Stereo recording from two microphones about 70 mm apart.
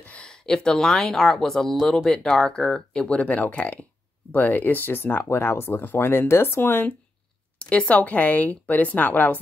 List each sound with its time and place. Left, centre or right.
0.0 s speech: centre
7.5 s speech: centre